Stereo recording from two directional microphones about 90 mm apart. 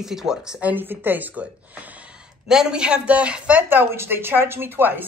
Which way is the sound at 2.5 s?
10° right (ahead or behind).